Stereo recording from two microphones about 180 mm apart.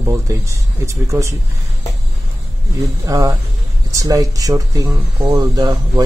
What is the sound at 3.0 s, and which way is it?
Speech, 20° right (ahead or behind).